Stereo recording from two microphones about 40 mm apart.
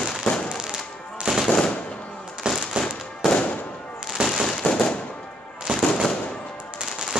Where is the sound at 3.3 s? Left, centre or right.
Left.